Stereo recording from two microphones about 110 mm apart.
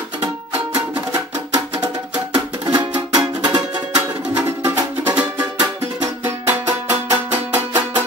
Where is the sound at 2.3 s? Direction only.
40° right (ahead or behind).